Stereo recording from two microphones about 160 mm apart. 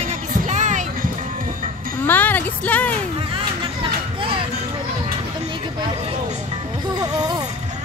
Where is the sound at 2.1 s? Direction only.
10° left (ahead or behind).